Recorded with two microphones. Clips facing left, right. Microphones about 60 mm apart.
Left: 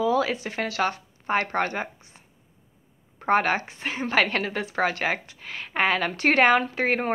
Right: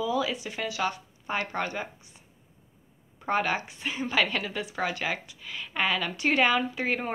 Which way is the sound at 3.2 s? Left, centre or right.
Left.